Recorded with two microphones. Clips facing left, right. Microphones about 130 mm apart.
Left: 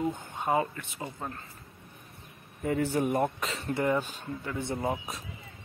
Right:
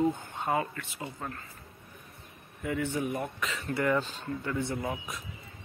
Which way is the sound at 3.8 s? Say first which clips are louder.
Even; 15° left (ahead or behind).